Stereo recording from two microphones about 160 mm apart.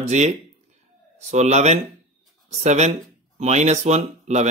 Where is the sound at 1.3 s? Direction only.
45° right (ahead or behind).